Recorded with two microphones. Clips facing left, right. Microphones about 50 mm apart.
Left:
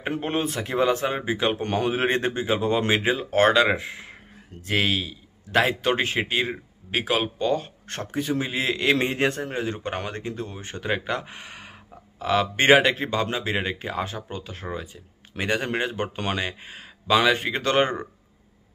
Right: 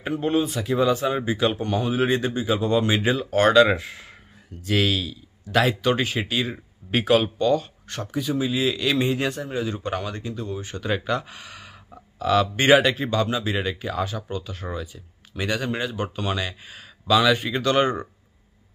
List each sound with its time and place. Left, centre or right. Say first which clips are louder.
0.2 s speech: right 3 dB; left
1.1 s speech: right 2 dB; left
1.6 s speech: right 1 dB; left
6.9 s a man's voice: right 5 dB; centre
7.6 s speech: even; left